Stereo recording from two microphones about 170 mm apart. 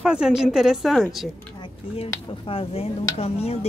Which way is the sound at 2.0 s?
35° left (ahead or behind).